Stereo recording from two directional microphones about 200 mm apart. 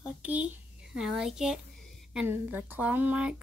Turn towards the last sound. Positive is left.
turn(degrees=-5)  # may be behind; listen again after turning